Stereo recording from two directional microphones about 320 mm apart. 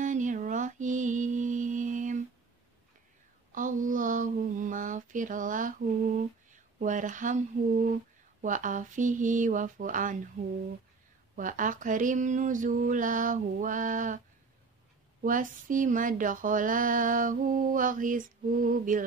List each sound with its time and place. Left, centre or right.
0.0 s mantra: right
3.5 s a sound: right
6.5 s speech: right
15.2 s speech: right